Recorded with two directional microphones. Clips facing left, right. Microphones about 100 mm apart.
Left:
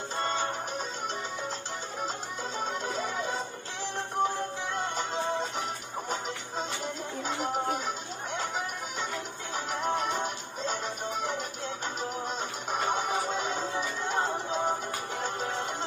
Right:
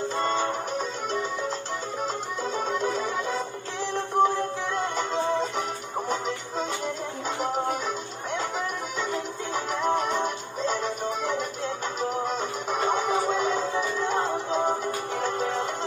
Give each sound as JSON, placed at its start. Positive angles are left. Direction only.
{"t": 0.2, "sound": "music", "side_deg": -45}
{"t": 2.5, "sound": "music", "side_deg": -45}
{"t": 7.2, "sound": "music", "side_deg": -45}
{"t": 9.7, "sound": "music", "side_deg": -45}